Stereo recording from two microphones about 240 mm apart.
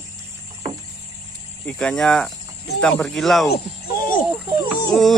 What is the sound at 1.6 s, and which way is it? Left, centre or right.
Speech, centre.